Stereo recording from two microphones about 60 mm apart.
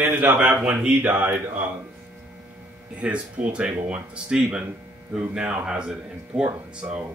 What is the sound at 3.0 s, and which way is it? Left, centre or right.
A man's voice, centre.